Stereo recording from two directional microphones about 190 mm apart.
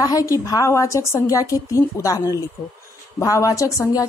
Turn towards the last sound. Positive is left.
turn(degrees=15)  # may be behind; listen again after turning